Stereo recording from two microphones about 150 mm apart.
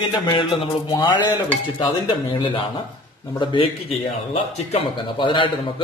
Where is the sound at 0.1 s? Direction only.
35° left (ahead or behind).